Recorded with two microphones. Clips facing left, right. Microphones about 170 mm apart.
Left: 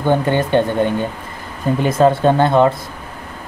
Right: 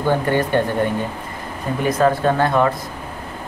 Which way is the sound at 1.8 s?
25° left (ahead or behind).